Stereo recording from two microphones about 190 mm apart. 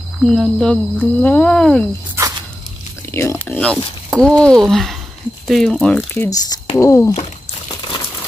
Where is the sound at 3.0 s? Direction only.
15° left (ahead or behind).